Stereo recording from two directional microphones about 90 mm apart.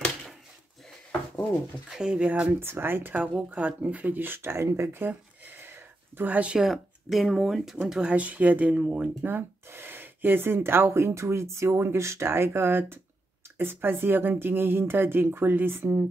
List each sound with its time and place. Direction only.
1.9 s speech: 5° right (ahead or behind)
2.6 s speech: 25° right (ahead or behind)